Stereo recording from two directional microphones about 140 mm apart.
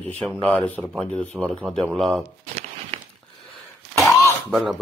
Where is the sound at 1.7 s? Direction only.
Centre (ahead or behind).